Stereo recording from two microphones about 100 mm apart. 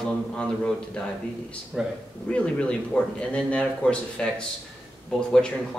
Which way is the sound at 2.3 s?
10° left (ahead or behind).